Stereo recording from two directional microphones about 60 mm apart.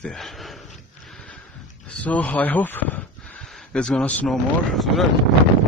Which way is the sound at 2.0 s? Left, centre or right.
Left.